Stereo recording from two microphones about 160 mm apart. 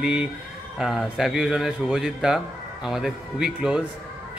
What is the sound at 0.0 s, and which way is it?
Speech, 5° right (ahead or behind).